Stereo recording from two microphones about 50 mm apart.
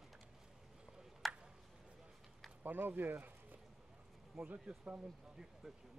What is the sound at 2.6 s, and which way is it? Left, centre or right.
Speech, right.